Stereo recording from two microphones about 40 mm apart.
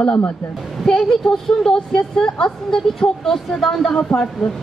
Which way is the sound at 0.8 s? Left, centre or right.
Centre.